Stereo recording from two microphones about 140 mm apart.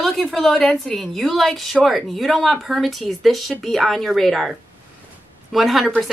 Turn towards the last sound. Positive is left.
turn(degrees=0)  # may be behind; listen again after turning